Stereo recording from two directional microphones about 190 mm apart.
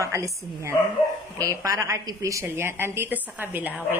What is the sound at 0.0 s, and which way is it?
A woman's voice, 15° right (ahead or behind).